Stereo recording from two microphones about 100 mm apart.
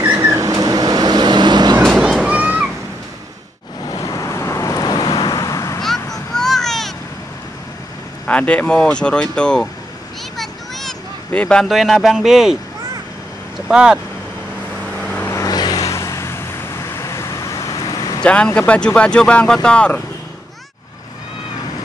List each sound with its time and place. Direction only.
0.1 s vehicle: 35° right (ahead or behind)
1.8 s children playing: 5° right (ahead or behind)
3.9 s vehicle: 35° left (ahead or behind)
6.3 s a sound: 5° left (ahead or behind)
8.3 s speech: 15° left (ahead or behind)
10.3 s a sound: 5° left (ahead or behind)
13.7 s speech: 10° right (ahead or behind)
15.0 s vehicle: 15° left (ahead or behind)
15.2 s vehicle: 30° left (ahead or behind)
15.5 s vehicle: 40° left (ahead or behind)
18.2 s speech: 10° left (ahead or behind)